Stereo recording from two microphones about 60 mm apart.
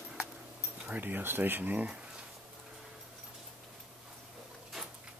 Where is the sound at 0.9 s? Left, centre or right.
Right.